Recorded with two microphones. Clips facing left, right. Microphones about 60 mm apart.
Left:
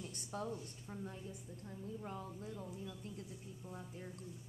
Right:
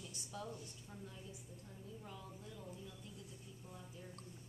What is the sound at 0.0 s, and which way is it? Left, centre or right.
A woman's voice, left.